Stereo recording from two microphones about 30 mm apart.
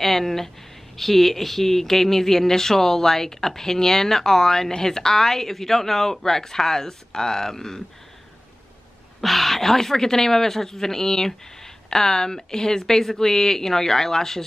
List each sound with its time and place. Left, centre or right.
0.0 s speech: centre
9.2 s speech: centre